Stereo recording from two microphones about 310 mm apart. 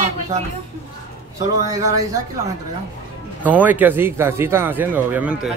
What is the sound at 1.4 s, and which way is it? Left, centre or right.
Speech, centre.